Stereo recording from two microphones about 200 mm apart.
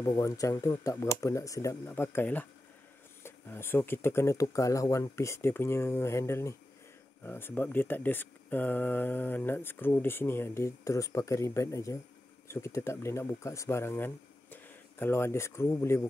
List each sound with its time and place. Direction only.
0.0 s speech: 20° left (ahead or behind)